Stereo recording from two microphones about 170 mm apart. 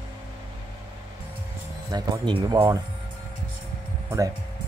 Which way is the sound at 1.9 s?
25° right (ahead or behind).